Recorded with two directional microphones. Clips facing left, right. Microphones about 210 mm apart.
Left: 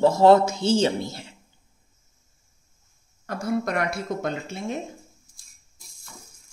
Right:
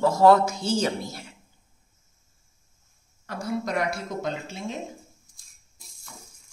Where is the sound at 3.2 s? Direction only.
55° left (ahead or behind).